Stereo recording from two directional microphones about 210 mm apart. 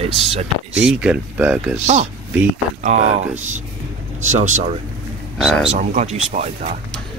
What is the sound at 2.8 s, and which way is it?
Speech, 35° right (ahead or behind).